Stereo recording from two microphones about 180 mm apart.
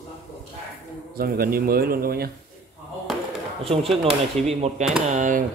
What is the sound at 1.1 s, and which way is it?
Speech, 55° right (ahead or behind).